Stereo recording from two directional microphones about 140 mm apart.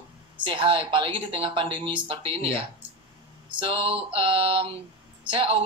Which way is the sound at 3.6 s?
40° right (ahead or behind).